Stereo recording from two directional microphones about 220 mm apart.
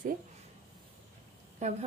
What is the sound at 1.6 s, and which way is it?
Speech, 30° right (ahead or behind).